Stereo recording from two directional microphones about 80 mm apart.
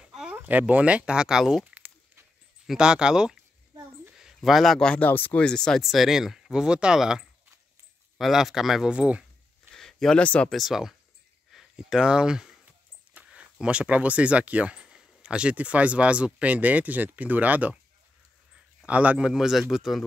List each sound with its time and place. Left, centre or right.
0.0 s a sound: centre
0.4 s a man's voice: right
9.8 s a sound: centre
10.2 s speech: centre
10.5 s speech: centre; by 17.7 s right
18.9 s speech: centre